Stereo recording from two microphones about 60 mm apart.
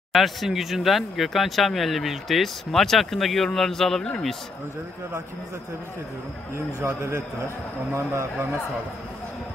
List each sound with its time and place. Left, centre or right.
0.1 s speech: centre
6.5 s a man's voice: right